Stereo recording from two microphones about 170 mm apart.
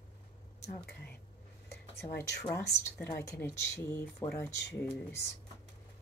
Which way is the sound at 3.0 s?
15° left (ahead or behind).